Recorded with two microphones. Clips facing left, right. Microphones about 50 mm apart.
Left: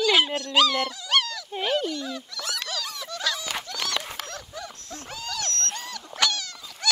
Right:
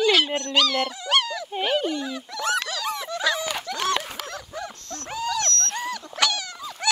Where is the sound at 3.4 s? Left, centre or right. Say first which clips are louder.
Right 5 dB; right.